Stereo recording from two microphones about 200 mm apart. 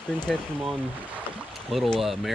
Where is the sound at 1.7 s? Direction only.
Centre (ahead or behind).